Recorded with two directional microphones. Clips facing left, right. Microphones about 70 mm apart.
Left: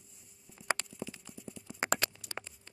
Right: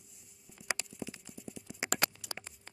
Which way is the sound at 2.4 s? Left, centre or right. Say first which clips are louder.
Left 9 dB; left.